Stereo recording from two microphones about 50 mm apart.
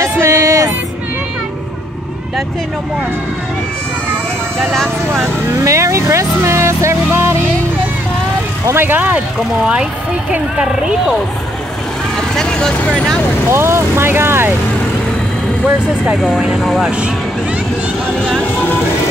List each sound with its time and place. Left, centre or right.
0.0 s music: right
5.6 s speech: right
8.7 s speech: right
12.2 s vehicle: centre
12.9 s speech: centre
13.5 s speech: right